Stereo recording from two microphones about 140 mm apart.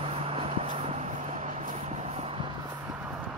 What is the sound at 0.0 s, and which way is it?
Vehicle, 45° right (ahead or behind).